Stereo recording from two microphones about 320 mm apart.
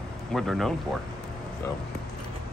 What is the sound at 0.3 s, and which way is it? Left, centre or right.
Speech, centre.